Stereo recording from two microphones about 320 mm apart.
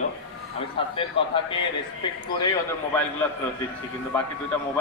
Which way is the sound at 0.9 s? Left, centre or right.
Centre.